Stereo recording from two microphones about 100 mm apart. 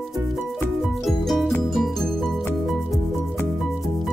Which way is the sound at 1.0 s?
Centre (ahead or behind).